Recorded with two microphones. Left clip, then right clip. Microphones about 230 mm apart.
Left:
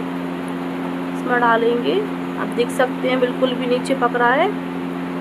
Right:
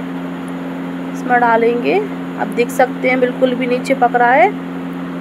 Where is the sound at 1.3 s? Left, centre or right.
Centre.